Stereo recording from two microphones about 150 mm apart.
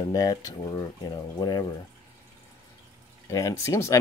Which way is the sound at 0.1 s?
25° left (ahead or behind).